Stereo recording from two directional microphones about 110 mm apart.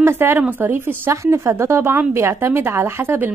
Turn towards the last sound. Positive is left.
turn(degrees=-20)  # may be behind; listen again after turning